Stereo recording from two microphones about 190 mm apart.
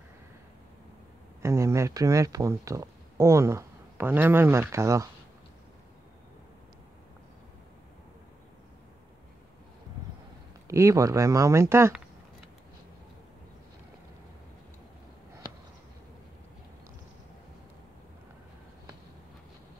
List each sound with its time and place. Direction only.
1.4 s speech: 15° right (ahead or behind)
10.7 s speech: 15° right (ahead or behind)